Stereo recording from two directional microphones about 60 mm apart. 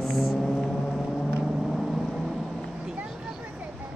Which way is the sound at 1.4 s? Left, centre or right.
Centre.